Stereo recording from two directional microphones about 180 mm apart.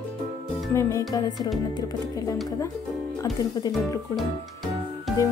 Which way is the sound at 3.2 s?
20° left (ahead or behind).